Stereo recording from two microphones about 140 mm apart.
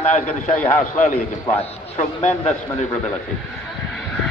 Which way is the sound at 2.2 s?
55° left (ahead or behind).